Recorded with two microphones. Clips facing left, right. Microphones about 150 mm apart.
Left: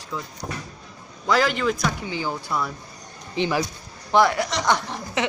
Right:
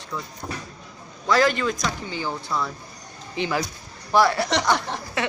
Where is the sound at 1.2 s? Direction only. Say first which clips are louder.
Right 1 dB; 10° left (ahead or behind).